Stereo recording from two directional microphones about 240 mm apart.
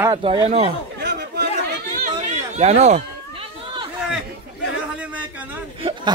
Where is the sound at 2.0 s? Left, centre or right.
Right.